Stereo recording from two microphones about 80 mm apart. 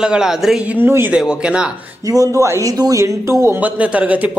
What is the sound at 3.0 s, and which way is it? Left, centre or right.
Speech, right.